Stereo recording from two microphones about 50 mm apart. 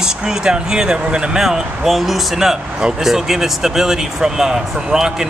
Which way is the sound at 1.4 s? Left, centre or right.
Centre.